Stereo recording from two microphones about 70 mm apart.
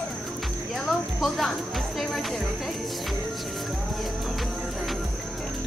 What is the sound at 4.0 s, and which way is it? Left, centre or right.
Music, centre.